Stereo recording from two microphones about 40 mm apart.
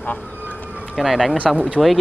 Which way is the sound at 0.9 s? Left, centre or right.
Centre.